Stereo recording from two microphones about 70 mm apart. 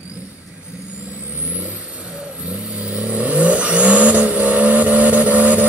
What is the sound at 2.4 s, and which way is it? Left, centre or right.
Vehicle, centre.